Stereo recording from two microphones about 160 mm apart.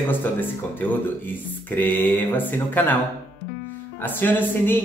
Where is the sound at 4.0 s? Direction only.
10° left (ahead or behind).